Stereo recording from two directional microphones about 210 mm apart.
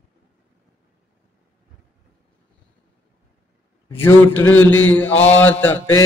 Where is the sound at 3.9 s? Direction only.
10° left (ahead or behind).